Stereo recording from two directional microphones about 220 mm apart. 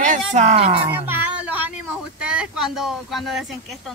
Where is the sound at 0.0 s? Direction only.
35° right (ahead or behind).